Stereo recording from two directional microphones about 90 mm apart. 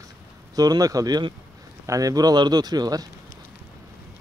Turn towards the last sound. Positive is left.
turn(degrees=-45)  # may be behind; listen again after turning